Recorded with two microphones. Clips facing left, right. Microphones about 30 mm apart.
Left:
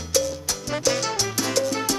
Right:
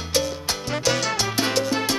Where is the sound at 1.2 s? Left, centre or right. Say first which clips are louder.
Right 1 dB; right.